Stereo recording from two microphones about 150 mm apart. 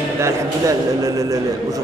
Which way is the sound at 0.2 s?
20° right (ahead or behind).